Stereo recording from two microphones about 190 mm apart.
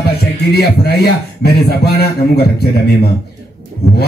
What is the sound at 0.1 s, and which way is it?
Speech, 55° left (ahead or behind).